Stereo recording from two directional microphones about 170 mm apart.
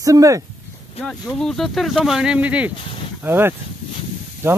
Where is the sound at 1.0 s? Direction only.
Centre (ahead or behind).